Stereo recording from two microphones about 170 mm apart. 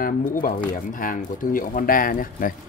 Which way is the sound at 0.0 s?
55° left (ahead or behind).